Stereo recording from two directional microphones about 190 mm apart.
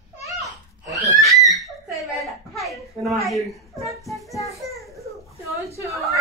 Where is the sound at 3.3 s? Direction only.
Centre (ahead or behind).